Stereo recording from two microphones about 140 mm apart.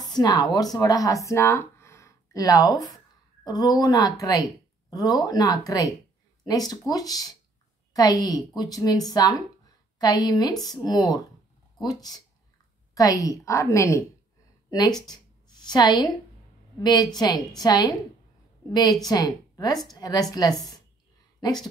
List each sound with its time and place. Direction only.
0.0 s speech: 30° left (ahead or behind)
15.0 s a sound: 30° left (ahead or behind)
16.8 s a woman's voice: 30° left (ahead or behind)